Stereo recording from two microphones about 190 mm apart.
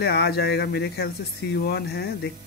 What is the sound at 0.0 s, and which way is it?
Speech, 60° left (ahead or behind).